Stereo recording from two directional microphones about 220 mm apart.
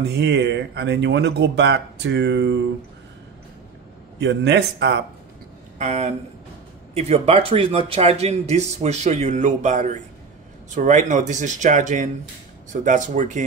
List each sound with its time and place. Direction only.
0.0 s speech: 50° right (ahead or behind)
4.2 s speech: 50° right (ahead or behind)
5.8 s speech: 30° right (ahead or behind)